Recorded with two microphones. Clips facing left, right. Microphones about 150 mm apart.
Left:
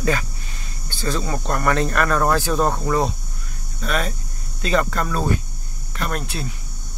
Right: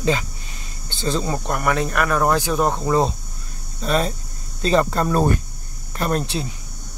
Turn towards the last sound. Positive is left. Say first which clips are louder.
# right 4 dB
turn(degrees=-25)  # may be behind; listen again after turning